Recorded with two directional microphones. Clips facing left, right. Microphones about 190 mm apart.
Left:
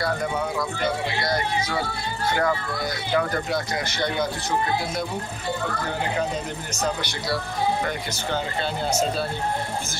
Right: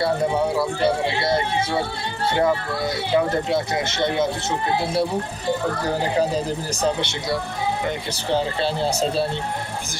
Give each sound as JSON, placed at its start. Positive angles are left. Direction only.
{"t": 0.0, "sound": "speech", "side_deg": -30}